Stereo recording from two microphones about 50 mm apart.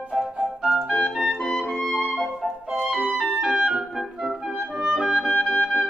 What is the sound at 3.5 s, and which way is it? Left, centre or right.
Clarinet, centre.